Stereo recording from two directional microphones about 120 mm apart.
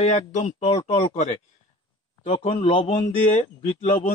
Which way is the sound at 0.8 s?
55° left (ahead or behind).